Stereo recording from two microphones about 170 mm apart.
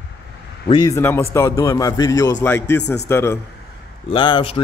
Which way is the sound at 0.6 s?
25° left (ahead or behind).